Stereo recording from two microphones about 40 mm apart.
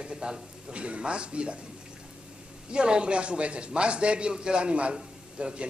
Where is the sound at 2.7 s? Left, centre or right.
Right.